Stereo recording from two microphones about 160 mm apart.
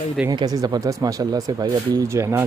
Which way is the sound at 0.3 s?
25° right (ahead or behind).